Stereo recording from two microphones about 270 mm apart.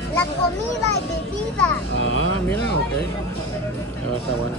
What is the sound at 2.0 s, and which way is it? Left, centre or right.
Speech, left.